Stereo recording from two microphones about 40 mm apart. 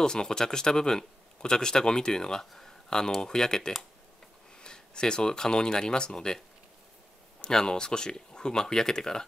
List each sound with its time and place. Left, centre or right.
0.0 s speech: centre
7.4 s speech: left